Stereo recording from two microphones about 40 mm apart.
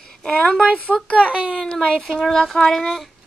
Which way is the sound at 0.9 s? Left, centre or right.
Left.